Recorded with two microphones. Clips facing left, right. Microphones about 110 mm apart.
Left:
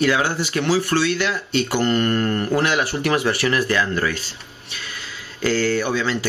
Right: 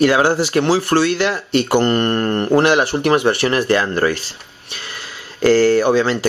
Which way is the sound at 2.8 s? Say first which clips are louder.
Right 5 dB; 25° right (ahead or behind).